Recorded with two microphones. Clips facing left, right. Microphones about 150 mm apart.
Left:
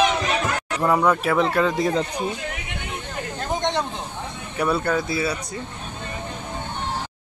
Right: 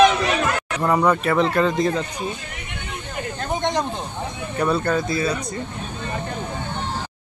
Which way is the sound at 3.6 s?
10° right (ahead or behind).